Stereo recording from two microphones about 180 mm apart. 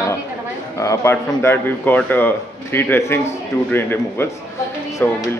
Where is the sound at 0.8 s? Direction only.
15° left (ahead or behind).